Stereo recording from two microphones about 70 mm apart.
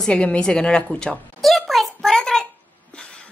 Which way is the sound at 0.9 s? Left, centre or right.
Centre.